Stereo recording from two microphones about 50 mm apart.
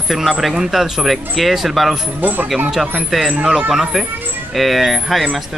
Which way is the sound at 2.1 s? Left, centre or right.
Right.